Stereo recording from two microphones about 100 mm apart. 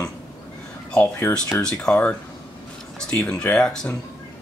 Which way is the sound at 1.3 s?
20° left (ahead or behind).